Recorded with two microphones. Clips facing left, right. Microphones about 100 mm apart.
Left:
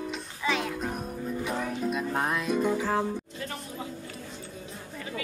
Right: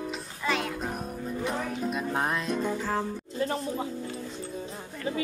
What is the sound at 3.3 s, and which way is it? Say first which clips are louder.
Music: right 8 dB; 30° right (ahead or behind).